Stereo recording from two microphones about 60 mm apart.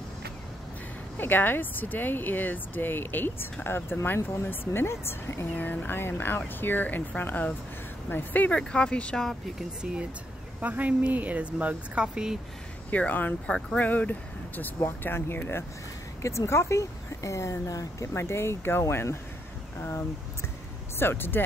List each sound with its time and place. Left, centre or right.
1.1 s speech: left; by 9.1 s centre
9.1 s speech: centre
9.6 s speech: centre
10.6 s speech: right
12.9 s speech: left
16.2 s speech: left
18.1 s speech: left
21.0 s speech: left